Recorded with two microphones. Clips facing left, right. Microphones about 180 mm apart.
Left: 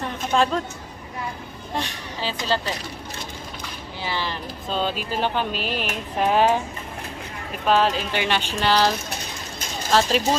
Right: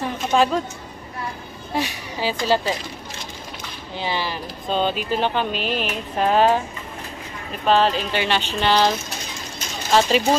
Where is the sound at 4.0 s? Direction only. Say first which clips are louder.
Right 3 dB; 15° right (ahead or behind).